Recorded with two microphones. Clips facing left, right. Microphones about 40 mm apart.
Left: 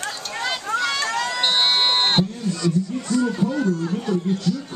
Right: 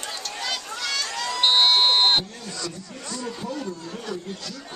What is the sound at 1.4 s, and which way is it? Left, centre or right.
Run, centre.